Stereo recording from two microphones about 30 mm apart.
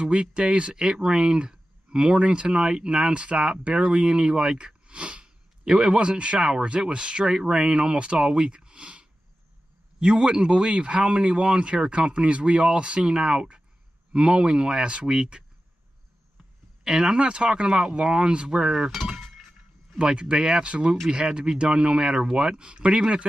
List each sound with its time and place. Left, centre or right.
0.0 s speech: right
3.1 s speech: right
3.8 s speech: right
5.2 s a sound: right
5.9 s speech: right
10.0 s speech: right
13.1 s speech: right
16.8 s speech: right
18.7 s cowbell: centre
20.0 s speech: right
20.6 s speech: right
22.6 s speech: right